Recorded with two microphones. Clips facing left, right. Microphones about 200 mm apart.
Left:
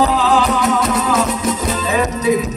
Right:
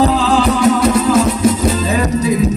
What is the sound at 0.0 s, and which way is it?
Music, 30° right (ahead or behind).